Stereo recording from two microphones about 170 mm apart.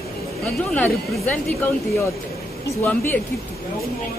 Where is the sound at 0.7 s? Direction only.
10° left (ahead or behind).